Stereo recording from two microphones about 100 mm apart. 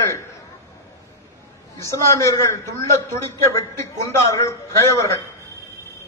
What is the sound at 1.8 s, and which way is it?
A man's voice, 30° left (ahead or behind).